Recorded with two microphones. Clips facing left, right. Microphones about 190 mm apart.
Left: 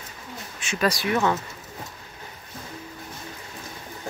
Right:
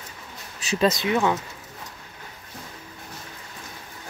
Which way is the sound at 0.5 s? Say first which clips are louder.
Right 5 dB; 35° right (ahead or behind).